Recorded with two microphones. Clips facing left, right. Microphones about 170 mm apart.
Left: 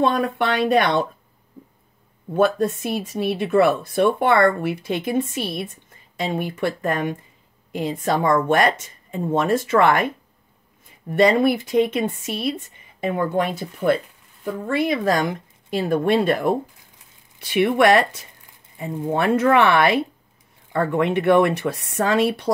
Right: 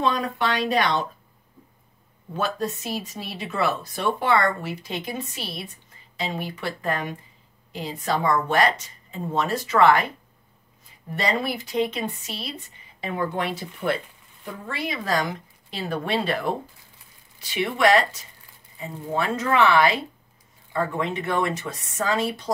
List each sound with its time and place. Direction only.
0.0 s speech: 55° left (ahead or behind)
2.3 s speech: 55° left (ahead or behind)
17.4 s speech: 60° left (ahead or behind)